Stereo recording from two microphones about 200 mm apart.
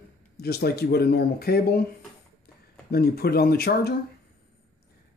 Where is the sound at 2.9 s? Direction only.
50° left (ahead or behind).